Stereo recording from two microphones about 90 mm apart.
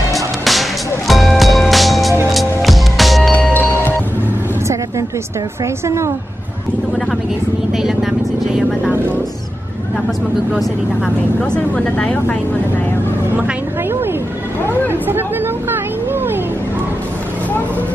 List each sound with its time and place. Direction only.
0.1 s music: centre (ahead or behind)
3.3 s music: 25° left (ahead or behind)
5.9 s a woman's voice: 30° right (ahead or behind)
7.7 s speech: 5° right (ahead or behind)
8.9 s speech: 25° right (ahead or behind)
11.5 s speech: 10° left (ahead or behind)
14.9 s speech: 25° right (ahead or behind)